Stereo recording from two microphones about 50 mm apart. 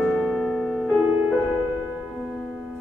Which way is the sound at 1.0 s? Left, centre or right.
Right.